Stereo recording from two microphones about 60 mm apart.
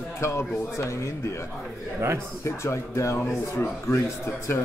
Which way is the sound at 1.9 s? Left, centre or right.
Right.